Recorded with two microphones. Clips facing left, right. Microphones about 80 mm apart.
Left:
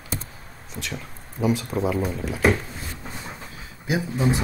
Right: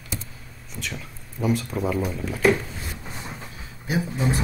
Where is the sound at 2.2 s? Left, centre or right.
Left.